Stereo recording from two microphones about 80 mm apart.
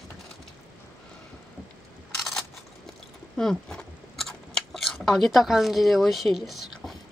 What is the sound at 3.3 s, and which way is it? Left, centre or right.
Chewing, centre.